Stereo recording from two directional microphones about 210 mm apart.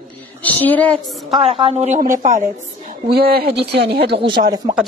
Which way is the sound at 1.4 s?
30° right (ahead or behind).